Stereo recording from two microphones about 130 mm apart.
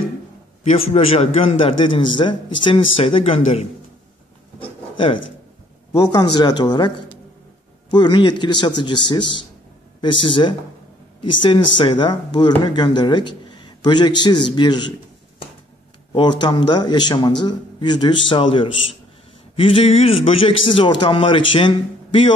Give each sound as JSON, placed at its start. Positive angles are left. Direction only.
{"t": 0.7, "sound": "a man's voice", "side_deg": 55}
{"t": 4.6, "sound": "a sound", "side_deg": 40}
{"t": 5.9, "sound": "a man's voice", "side_deg": 30}
{"t": 7.9, "sound": "a man's voice", "side_deg": 35}